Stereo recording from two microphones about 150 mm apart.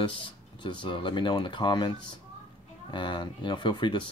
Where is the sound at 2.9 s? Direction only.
30° left (ahead or behind).